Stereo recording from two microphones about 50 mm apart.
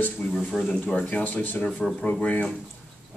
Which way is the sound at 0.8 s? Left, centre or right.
Left.